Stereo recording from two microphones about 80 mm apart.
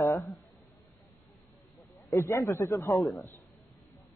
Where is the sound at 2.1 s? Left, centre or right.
Left.